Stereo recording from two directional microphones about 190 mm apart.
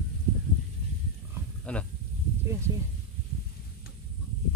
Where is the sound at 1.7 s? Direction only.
5° left (ahead or behind).